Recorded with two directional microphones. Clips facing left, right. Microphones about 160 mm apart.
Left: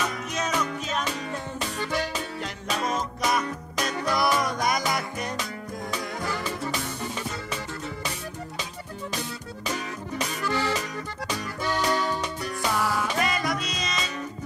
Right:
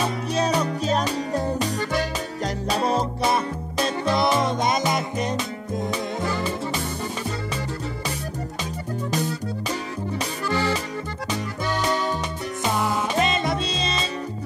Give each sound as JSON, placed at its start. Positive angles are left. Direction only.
{"t": 0.0, "sound": "music", "side_deg": -30}
{"t": 10.5, "sound": "music", "side_deg": -30}